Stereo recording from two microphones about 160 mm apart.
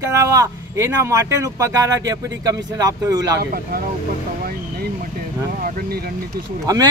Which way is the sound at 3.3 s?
65° right (ahead or behind).